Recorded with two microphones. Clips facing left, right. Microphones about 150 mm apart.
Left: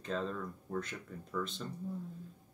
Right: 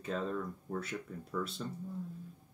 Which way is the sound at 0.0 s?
5° right (ahead or behind).